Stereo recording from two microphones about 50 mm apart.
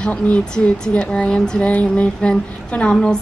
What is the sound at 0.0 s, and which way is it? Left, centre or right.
A woman's voice, left.